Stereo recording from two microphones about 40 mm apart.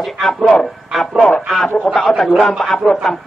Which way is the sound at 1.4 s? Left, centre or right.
Centre.